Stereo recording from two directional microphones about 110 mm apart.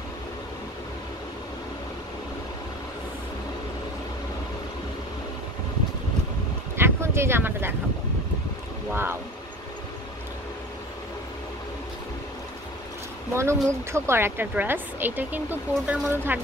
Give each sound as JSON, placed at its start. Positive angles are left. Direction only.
{"t": 6.8, "sound": "a sound", "side_deg": -20}
{"t": 8.9, "sound": "speech", "side_deg": -20}
{"t": 13.3, "sound": "speech", "side_deg": -25}